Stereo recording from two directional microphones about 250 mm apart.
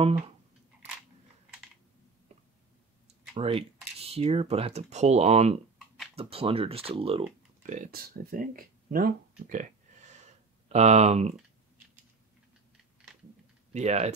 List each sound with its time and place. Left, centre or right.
3.3 s speech: right
9.5 s a sound: right
13.7 s speech: right